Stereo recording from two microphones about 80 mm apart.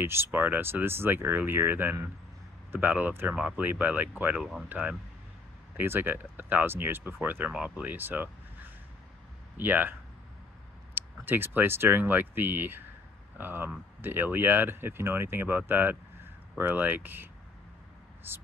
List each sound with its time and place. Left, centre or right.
0.0 s speech: right
4.4 s speech: centre
4.6 s speech: right
11.0 s speech: right